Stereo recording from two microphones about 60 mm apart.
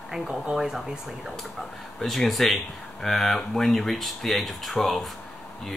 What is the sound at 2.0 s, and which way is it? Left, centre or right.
Speech, centre.